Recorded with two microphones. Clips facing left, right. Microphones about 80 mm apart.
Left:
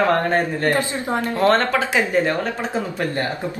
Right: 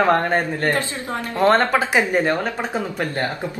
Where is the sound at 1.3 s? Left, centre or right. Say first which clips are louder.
Right 2 dB; centre.